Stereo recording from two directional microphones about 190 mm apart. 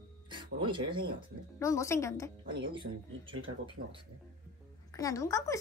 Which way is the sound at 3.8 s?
55° right (ahead or behind).